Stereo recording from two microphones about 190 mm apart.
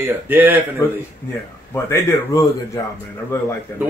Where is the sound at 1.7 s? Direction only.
15° left (ahead or behind).